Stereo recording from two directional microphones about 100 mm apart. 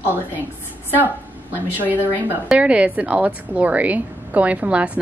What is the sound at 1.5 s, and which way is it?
A woman's voice, 20° right (ahead or behind).